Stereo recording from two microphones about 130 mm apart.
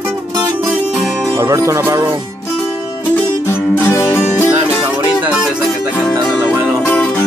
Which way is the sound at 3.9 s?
20° left (ahead or behind).